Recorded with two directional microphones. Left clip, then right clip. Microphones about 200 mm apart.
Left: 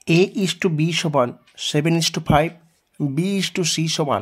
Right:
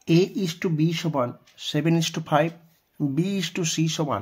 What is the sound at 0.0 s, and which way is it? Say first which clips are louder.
Speech: left 4 dB; 40° left (ahead or behind).